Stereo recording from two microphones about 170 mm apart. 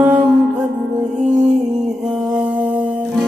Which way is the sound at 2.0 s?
5° right (ahead or behind).